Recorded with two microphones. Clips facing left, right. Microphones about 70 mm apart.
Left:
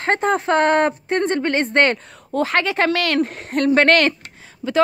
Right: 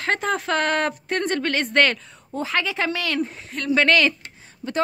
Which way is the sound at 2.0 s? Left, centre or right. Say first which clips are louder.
Left 8 dB; left.